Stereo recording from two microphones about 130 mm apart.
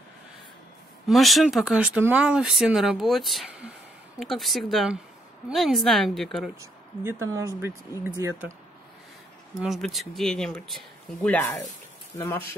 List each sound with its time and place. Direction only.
1.0 s speech: centre (ahead or behind)
6.6 s speech: 20° right (ahead or behind)
9.6 s speech: centre (ahead or behind); by 12.4 s 20° left (ahead or behind)